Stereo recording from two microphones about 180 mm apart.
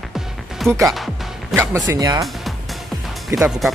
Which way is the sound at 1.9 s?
20° right (ahead or behind).